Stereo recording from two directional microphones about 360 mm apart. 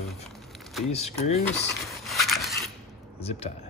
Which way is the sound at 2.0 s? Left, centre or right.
Centre.